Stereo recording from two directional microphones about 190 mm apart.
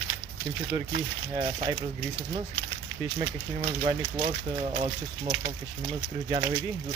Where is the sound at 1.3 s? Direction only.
20° right (ahead or behind).